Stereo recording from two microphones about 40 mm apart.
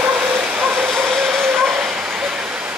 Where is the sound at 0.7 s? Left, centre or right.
Right.